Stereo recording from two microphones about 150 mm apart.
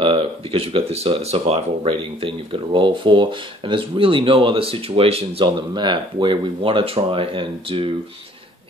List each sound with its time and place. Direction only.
0.0 s speech: 40° right (ahead or behind)